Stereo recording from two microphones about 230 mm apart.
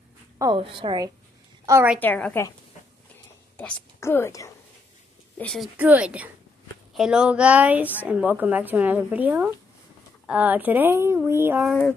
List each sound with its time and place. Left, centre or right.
0.4 s a woman's voice: centre
2.0 s a woman's voice: centre
3.5 s a woman's voice: centre
5.4 s a woman's voice: centre